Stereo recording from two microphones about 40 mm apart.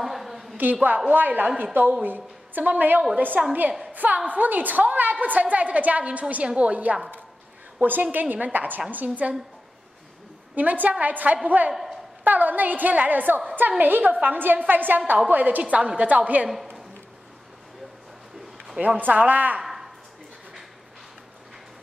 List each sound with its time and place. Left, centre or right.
0.0 s a sound: centre
0.8 s a woman's voice: right
3.4 s a woman's voice: right
7.8 s a woman's voice: right
10.5 s a woman's voice: right
11.7 s a sound: centre
12.3 s a woman's voice: right
15.6 s a woman's voice: right
18.9 s a woman's voice: right
19.6 s a sound: centre